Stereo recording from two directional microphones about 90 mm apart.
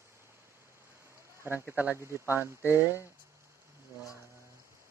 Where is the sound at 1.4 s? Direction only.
25° right (ahead or behind).